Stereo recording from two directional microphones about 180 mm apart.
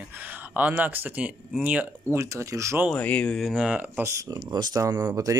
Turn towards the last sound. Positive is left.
turn(degrees=-20)  # may be behind; listen again after turning